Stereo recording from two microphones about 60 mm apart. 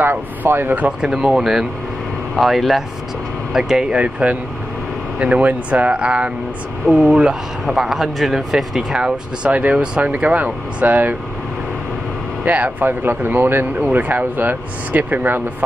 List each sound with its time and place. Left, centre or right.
0.0 s speech: right
1.0 s speech: centre; by 11.1 s right
12.4 s speech: right